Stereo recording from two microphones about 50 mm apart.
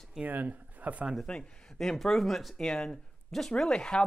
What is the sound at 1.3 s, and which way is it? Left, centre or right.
Speech, centre.